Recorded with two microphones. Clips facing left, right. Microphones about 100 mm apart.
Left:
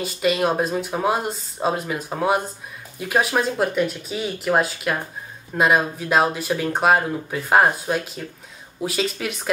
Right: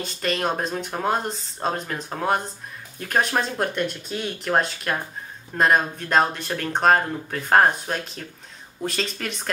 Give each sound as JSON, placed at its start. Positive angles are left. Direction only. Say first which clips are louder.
{"t": 0.0, "sound": "speech", "louder": "left 5 dB", "side_deg": 5}